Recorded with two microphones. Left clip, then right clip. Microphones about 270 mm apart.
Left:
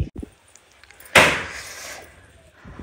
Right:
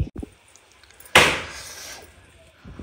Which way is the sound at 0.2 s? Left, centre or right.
Left.